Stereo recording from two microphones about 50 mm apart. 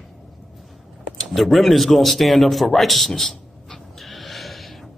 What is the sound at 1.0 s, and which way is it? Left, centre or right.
Speech, centre.